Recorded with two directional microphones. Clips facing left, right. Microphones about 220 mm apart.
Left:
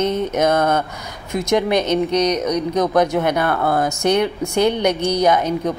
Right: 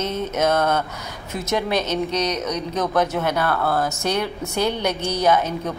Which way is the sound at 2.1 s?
55° left (ahead or behind).